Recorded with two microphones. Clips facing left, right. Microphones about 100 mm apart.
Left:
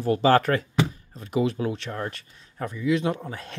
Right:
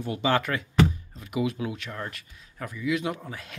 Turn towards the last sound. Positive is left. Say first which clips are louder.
# left 4 dB
turn(degrees=30)  # may be behind; listen again after turning